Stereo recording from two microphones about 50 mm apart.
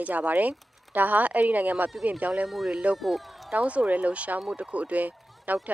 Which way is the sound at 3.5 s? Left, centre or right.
Right.